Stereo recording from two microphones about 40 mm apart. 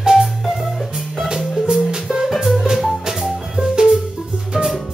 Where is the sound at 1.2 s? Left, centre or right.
Centre.